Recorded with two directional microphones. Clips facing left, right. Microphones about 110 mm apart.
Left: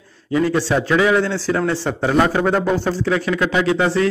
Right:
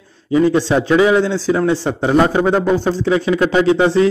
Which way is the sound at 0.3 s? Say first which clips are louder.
Right 4 dB; 20° right (ahead or behind).